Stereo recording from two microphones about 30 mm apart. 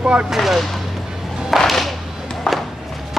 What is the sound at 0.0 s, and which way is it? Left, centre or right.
Speech, right.